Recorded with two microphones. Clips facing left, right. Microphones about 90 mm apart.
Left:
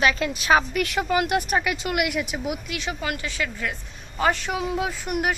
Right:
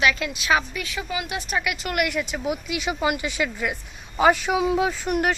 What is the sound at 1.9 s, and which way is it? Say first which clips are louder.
Speech: even; 15° left (ahead or behind).